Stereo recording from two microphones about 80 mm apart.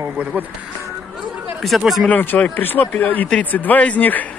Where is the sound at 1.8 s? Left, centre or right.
Centre.